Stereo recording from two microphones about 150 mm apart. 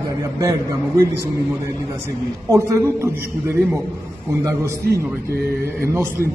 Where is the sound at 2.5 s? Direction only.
20° right (ahead or behind).